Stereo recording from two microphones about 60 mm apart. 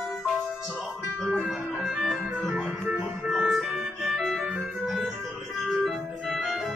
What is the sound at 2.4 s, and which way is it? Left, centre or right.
Music, right.